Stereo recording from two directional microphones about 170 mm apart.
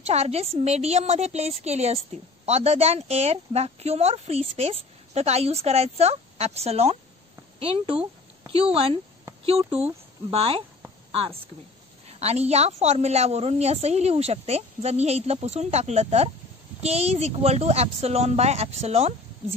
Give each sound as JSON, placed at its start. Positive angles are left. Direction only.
{"t": 0.0, "sound": "a woman's voice", "side_deg": -40}
{"t": 10.3, "sound": "a woman's voice", "side_deg": -35}
{"t": 12.1, "sound": "a woman's voice", "side_deg": -40}